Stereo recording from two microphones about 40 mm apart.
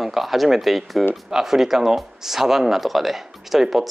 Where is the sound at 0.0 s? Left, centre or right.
Centre.